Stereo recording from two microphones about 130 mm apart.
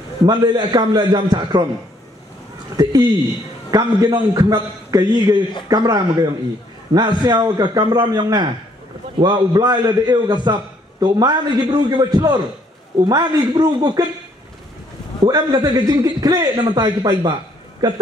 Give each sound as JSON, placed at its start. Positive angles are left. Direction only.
{"t": 0.3, "sound": "a man's voice", "side_deg": -30}
{"t": 2.8, "sound": "a man's voice", "side_deg": -30}
{"t": 15.2, "sound": "a man's voice", "side_deg": -35}